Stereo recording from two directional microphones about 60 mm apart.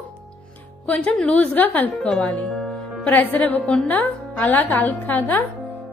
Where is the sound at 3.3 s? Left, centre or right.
Left.